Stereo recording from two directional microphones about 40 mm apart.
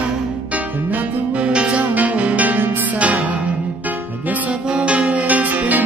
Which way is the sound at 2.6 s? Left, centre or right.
Right.